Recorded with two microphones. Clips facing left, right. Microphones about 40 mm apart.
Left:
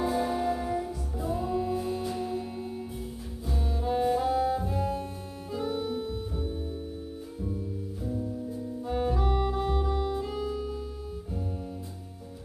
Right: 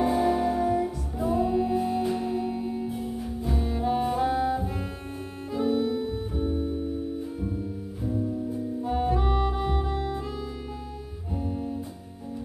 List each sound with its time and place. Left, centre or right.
0.1 s music: right
8.8 s music: centre